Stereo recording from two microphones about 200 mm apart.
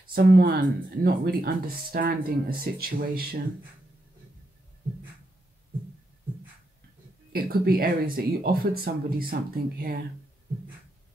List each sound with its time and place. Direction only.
0.1 s speech: 50° right (ahead or behind)
7.3 s speech: 50° right (ahead or behind)